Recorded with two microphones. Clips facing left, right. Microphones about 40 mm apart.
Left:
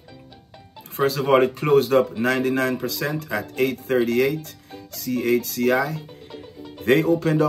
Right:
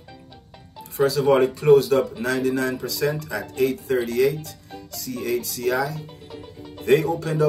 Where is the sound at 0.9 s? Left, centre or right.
Left.